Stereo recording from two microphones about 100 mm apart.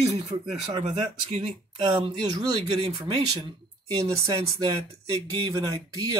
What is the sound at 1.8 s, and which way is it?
Speech, 55° right (ahead or behind).